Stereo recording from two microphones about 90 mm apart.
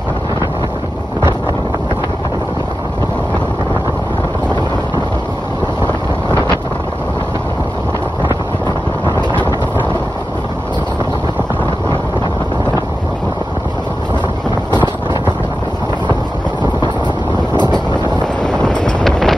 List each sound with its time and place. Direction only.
14.7 s vehicle: 55° left (ahead or behind)
17.6 s vehicle: 55° left (ahead or behind)
18.2 s wind noise: 10° left (ahead or behind)